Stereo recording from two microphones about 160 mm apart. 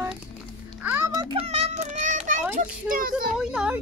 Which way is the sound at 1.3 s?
40° right (ahead or behind).